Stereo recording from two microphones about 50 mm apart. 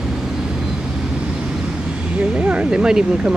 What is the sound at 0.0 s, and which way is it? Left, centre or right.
Vehicle, centre.